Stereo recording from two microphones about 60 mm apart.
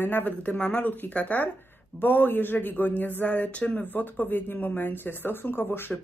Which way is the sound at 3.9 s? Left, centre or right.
Left.